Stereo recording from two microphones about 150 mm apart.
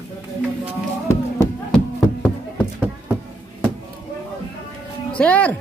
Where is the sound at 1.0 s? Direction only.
20° left (ahead or behind).